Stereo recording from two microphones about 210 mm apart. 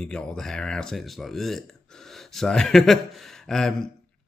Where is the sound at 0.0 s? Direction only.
5° left (ahead or behind).